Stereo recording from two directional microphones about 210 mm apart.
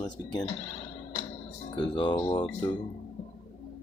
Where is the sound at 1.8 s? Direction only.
25° left (ahead or behind).